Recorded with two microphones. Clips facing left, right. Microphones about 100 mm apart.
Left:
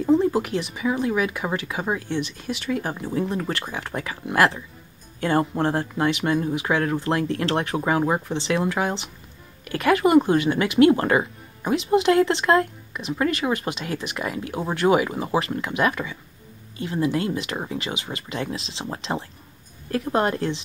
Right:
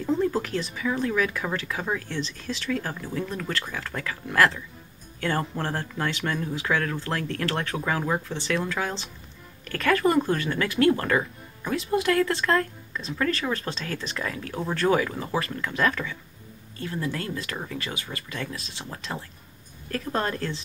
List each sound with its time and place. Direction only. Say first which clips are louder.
0.0 s speech: left 5 dB; 20° left (ahead or behind)